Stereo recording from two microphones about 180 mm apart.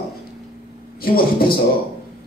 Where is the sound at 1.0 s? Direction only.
55° left (ahead or behind).